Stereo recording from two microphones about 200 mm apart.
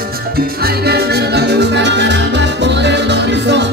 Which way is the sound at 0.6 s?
50° right (ahead or behind).